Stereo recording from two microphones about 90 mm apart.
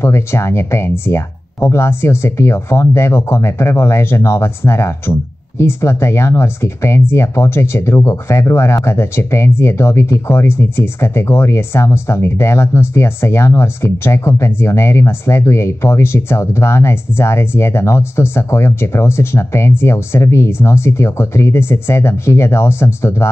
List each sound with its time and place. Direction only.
0.0 s speech: 30° left (ahead or behind)